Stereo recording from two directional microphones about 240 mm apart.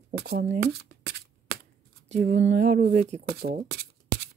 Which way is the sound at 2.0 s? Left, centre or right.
Right.